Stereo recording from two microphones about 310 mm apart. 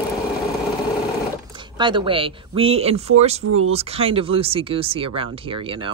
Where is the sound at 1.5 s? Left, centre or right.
Centre.